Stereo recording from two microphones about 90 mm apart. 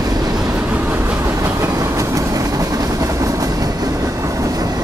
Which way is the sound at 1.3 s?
30° right (ahead or behind).